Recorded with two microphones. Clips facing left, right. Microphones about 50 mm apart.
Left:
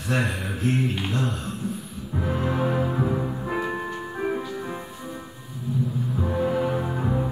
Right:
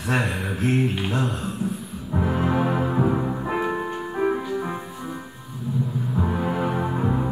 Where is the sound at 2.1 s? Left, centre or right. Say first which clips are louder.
Right 3 dB; right.